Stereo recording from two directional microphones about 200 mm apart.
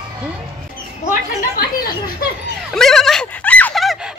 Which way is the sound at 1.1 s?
45° left (ahead or behind).